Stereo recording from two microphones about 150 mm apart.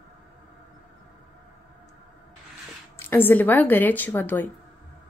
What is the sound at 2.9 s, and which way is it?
Speech, 15° left (ahead or behind).